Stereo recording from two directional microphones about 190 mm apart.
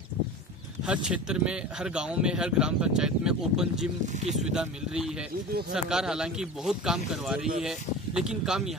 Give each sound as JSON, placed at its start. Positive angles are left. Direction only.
{"t": 1.0, "sound": "speech", "side_deg": -5}